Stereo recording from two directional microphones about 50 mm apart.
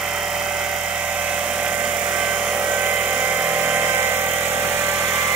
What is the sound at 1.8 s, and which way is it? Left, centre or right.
Helicopter, right.